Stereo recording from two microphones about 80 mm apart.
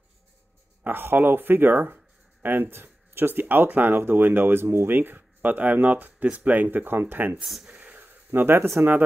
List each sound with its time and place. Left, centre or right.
0.8 s speech: right
7.4 s speech: centre
7.7 s a sound: right
8.7 s speech: right